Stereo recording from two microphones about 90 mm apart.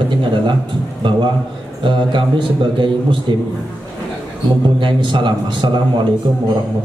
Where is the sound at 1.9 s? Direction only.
65° right (ahead or behind).